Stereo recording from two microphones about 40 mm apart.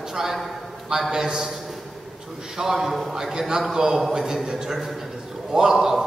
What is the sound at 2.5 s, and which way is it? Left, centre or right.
A man's voice, centre.